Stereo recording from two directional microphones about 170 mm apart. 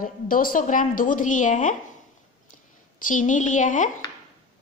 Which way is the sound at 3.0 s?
50° left (ahead or behind).